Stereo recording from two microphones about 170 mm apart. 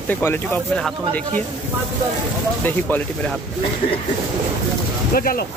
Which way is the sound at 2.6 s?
10° left (ahead or behind).